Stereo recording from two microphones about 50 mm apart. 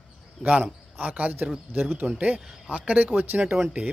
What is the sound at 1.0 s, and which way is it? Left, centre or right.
Speech, right.